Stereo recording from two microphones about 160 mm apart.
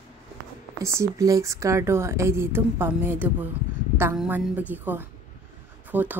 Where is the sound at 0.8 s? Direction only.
20° right (ahead or behind).